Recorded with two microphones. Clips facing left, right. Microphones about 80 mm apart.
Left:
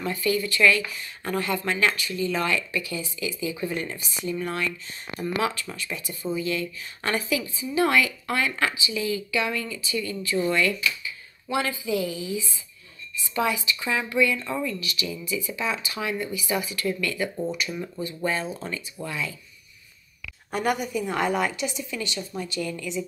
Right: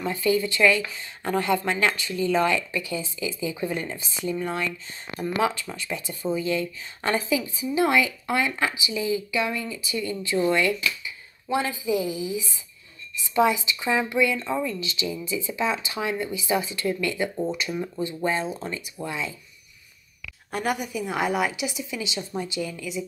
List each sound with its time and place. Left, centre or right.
0.0 s a woman's voice: right
10.5 s speech: right
20.5 s a woman's voice: centre